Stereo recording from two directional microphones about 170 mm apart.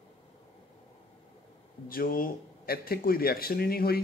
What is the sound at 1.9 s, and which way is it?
A man's voice, 60° left (ahead or behind).